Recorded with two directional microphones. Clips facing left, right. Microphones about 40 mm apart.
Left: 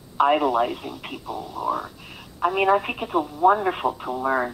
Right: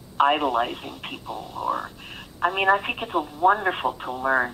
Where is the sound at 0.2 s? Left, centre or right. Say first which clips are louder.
Left 1 dB; right.